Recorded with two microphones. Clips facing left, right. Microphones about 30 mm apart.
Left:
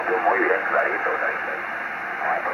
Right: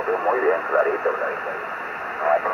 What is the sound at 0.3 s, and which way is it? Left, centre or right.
Speech, left.